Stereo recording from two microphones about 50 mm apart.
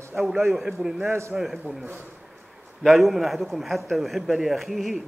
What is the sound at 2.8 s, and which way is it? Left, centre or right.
A man's voice, centre.